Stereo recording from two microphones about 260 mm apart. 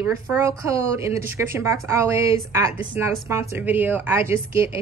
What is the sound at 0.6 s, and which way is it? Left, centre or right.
A woman's voice, centre.